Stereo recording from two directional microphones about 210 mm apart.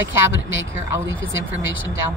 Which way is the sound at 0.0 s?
65° right (ahead or behind).